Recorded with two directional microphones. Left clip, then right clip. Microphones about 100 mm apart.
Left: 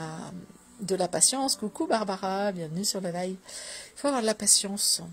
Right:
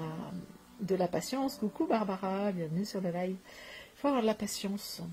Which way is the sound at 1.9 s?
40° left (ahead or behind).